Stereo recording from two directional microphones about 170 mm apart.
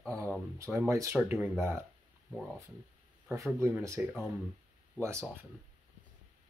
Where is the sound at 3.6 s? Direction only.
15° right (ahead or behind).